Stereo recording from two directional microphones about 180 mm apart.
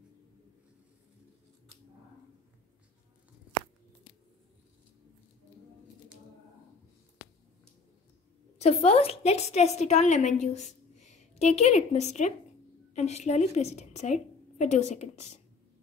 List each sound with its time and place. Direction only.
8.5 s a woman's voice: 35° left (ahead or behind)